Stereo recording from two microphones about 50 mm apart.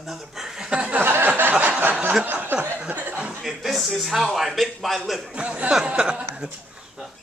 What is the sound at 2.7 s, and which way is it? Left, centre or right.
Chuckle, right.